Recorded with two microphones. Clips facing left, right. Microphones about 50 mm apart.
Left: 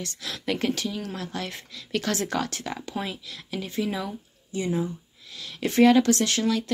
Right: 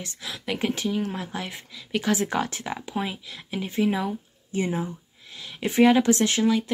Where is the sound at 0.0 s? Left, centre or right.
Centre.